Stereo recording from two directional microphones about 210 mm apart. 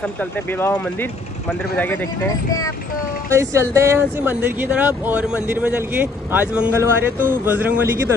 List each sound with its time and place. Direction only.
0.2 s speech: 10° left (ahead or behind)
3.3 s speech: 15° right (ahead or behind)